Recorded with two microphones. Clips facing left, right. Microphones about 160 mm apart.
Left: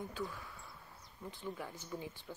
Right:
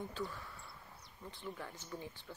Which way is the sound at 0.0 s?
5° left (ahead or behind).